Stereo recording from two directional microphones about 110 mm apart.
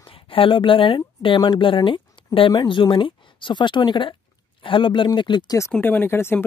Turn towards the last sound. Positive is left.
turn(degrees=20)  # may be behind; listen again after turning